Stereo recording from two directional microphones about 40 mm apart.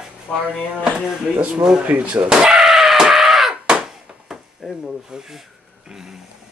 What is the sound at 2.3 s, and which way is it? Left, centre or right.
Speech, right.